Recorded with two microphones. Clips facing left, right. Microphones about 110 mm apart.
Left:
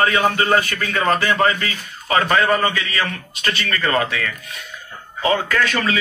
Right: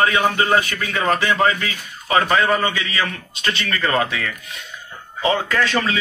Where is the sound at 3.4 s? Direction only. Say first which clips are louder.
Even; 25° right (ahead or behind).